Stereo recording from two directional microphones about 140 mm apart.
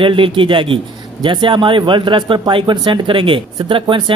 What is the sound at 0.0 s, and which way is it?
Speech, 35° right (ahead or behind).